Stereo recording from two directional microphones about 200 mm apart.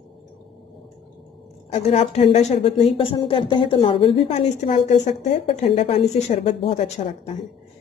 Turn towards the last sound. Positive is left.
turn(degrees=30)  # may be behind; listen again after turning